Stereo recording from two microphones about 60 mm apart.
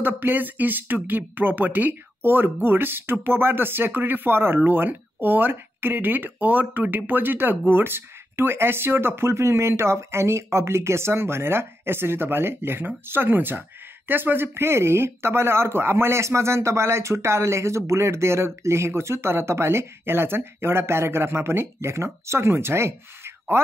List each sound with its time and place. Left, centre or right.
0.0 s speech: right